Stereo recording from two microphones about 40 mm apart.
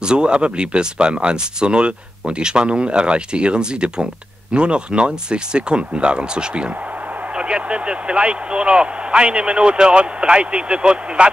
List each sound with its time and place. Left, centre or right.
0.0 s speech: right